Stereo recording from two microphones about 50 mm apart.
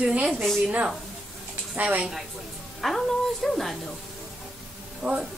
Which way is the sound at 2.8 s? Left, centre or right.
Centre.